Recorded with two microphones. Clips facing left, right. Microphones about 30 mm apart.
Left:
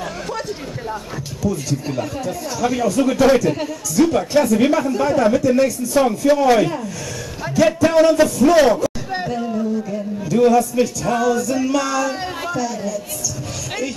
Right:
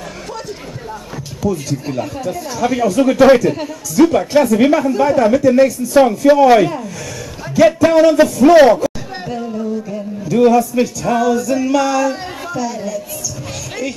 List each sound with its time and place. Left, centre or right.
1.4 s a woman's voice: centre
3.2 s speech: centre
3.4 s a woman's voice: centre
9.1 s a sound: centre
9.6 s speech: centre